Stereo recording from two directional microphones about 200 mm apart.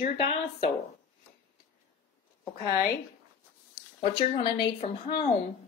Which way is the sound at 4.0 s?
25° left (ahead or behind).